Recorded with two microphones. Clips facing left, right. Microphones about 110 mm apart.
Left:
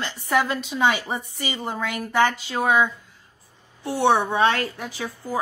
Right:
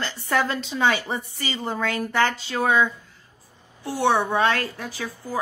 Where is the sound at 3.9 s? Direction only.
20° left (ahead or behind).